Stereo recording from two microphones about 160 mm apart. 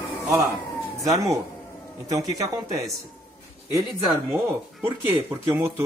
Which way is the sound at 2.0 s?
20° right (ahead or behind).